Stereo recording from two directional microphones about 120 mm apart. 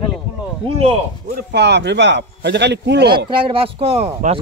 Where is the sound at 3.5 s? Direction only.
50° right (ahead or behind).